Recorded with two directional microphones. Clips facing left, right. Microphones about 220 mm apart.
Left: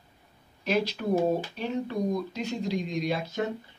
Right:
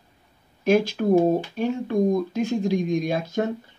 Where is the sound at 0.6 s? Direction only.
50° right (ahead or behind).